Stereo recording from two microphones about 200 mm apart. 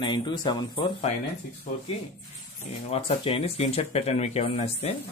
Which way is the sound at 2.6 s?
30° left (ahead or behind).